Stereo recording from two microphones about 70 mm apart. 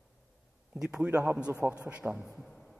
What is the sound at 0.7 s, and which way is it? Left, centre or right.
A man's voice, centre.